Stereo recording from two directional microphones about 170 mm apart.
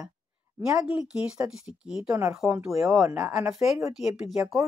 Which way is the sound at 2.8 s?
15° right (ahead or behind).